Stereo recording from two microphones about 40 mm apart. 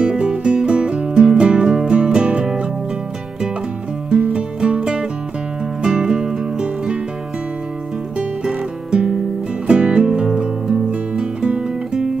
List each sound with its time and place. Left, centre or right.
0.0 s music: right
4.3 s music: right
8.5 s music: right
10.9 s guitar: right